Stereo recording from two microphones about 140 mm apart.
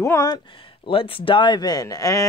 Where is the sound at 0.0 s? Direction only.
20° left (ahead or behind).